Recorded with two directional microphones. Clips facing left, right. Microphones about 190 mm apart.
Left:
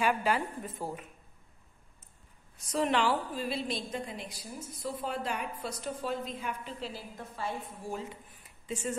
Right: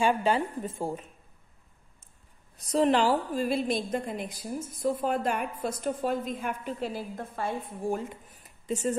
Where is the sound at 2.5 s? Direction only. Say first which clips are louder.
Right 6 dB; 35° right (ahead or behind).